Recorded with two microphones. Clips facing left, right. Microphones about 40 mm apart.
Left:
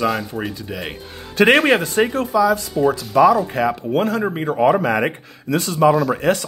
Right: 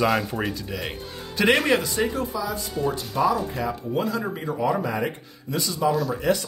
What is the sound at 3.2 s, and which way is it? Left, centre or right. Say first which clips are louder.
Speech: left 9 dB; left.